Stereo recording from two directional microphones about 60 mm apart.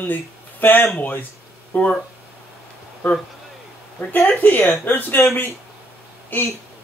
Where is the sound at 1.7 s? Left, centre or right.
Left.